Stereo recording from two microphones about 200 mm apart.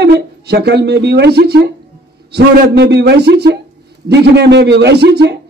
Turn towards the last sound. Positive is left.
turn(degrees=-55)  # may be behind; listen again after turning